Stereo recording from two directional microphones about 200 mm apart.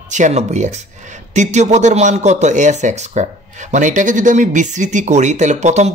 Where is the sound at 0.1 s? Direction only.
35° right (ahead or behind).